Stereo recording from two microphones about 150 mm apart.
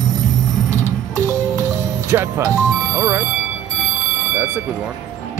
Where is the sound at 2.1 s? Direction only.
20° right (ahead or behind).